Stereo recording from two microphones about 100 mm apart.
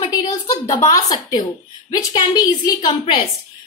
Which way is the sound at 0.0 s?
45° left (ahead or behind).